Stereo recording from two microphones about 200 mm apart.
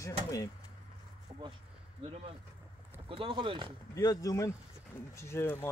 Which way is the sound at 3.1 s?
25° right (ahead or behind).